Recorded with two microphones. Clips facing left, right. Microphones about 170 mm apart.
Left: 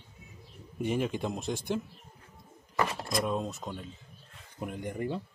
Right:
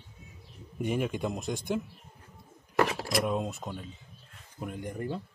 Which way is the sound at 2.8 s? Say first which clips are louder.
Right 3 dB; 75° right (ahead or behind).